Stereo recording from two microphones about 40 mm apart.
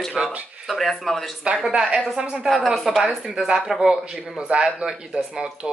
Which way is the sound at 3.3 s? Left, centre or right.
Centre.